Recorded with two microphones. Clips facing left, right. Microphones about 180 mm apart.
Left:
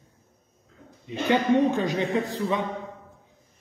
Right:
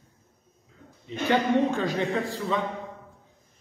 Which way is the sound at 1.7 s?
20° left (ahead or behind).